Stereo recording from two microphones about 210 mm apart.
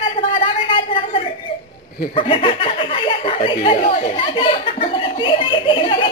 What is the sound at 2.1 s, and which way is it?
Speech, 25° left (ahead or behind).